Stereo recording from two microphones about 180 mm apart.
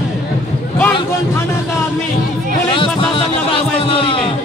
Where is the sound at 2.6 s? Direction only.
30° left (ahead or behind).